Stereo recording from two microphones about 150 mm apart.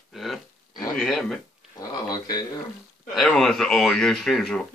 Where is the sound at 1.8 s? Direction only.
25° left (ahead or behind).